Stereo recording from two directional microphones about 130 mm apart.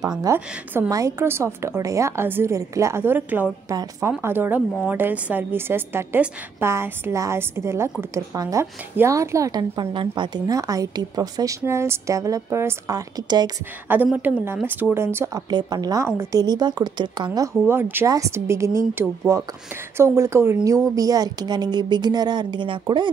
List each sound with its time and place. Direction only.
0.2 s a woman's voice: 25° right (ahead or behind)
14.1 s a woman's voice: 15° right (ahead or behind)
15.5 s a woman's voice: 30° right (ahead or behind)
17.6 s a woman's voice: 15° right (ahead or behind); by 23.0 s 40° right (ahead or behind)